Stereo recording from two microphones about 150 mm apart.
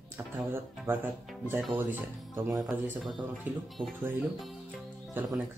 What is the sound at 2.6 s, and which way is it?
Speech, 5° right (ahead or behind).